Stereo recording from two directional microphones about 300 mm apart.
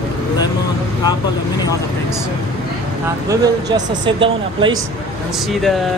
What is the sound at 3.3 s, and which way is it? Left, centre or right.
Speech, centre.